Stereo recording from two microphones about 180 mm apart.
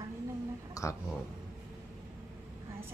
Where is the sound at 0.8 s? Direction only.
20° left (ahead or behind).